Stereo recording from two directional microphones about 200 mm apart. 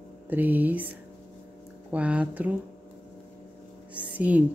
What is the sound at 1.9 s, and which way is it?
Speech, 5° right (ahead or behind).